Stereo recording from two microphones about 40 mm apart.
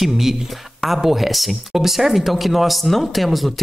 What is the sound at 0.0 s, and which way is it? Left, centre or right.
Speech, centre.